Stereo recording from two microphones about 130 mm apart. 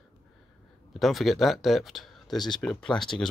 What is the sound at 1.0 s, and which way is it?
Speech, centre (ahead or behind).